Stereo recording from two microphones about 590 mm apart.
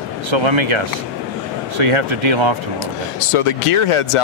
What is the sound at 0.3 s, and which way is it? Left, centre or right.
Speech, right.